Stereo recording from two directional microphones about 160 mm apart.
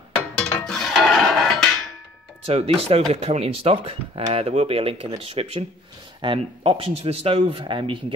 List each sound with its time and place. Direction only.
0.4 s music: 5° left (ahead or behind)
2.4 s speech: 35° right (ahead or behind)